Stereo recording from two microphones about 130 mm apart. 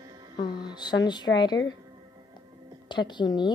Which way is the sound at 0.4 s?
35° left (ahead or behind).